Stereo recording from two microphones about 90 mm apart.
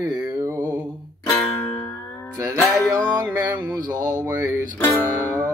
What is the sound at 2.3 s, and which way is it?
Music, 35° right (ahead or behind).